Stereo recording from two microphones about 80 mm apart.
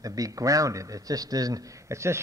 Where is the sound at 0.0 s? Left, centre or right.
Right.